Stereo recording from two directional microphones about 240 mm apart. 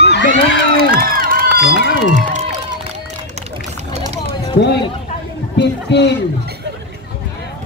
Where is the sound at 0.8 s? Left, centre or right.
Right.